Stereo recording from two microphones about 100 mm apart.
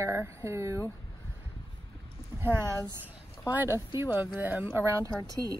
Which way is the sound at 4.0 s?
20° right (ahead or behind).